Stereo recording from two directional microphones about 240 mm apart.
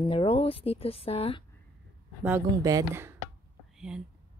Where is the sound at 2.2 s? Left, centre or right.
Centre.